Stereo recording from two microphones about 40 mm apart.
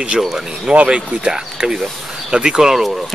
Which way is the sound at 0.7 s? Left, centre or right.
Right.